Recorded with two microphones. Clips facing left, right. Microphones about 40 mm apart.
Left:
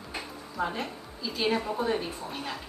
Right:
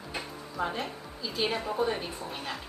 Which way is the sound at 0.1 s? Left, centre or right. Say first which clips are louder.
Even; centre.